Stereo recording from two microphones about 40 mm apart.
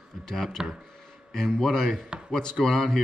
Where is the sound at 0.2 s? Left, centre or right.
Centre.